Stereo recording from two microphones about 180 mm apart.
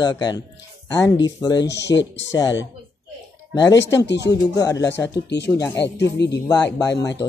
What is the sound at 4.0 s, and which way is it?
Speech, 75° left (ahead or behind).